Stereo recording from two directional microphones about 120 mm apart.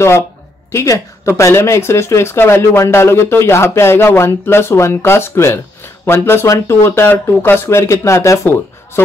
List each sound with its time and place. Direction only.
0.7 s speech: 25° left (ahead or behind)